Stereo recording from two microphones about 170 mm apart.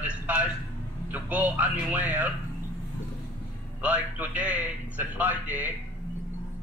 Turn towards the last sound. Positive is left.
turn(degrees=-10)  # may be behind; listen again after turning